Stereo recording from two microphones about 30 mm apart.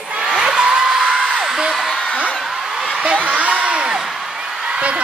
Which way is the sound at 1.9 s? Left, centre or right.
Left.